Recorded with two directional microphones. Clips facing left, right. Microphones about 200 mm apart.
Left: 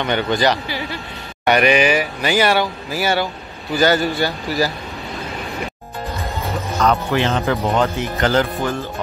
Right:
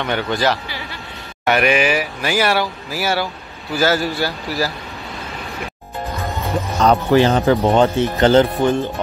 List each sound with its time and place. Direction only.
0.0 s speech: centre (ahead or behind)
6.8 s speech: 35° right (ahead or behind)